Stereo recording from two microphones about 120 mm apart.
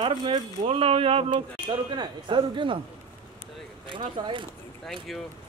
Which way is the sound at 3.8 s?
40° right (ahead or behind).